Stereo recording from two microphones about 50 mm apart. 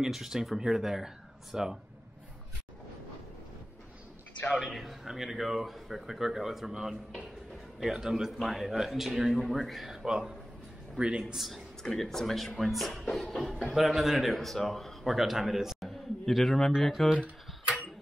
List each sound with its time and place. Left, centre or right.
0.0 s speech: centre
4.6 s a man's voice: centre
11.3 s a man's voice: centre